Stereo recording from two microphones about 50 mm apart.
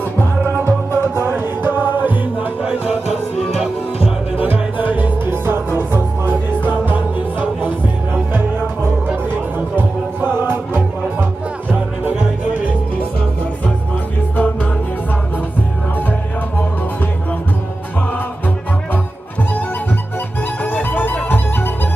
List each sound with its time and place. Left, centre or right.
0.7 s music: right
1.3 s music: right
3.4 s music: centre
4.8 s music: right
14.3 s music: left
20.6 s music: left